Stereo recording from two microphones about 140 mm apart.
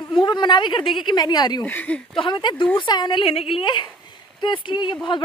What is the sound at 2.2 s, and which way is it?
A woman's voice, 35° left (ahead or behind).